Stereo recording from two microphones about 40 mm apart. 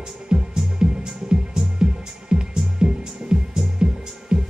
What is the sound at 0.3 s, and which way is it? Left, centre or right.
Music, centre.